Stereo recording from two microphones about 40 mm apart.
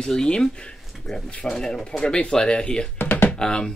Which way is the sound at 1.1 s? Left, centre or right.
Centre.